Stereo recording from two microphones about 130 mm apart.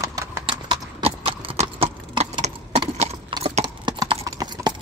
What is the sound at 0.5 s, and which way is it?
Clip-clop, 45° right (ahead or behind).